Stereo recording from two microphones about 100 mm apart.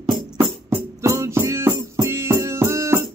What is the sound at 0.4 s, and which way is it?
Music, 25° right (ahead or behind).